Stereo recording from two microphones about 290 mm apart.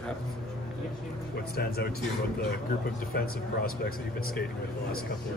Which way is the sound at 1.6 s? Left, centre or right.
Left.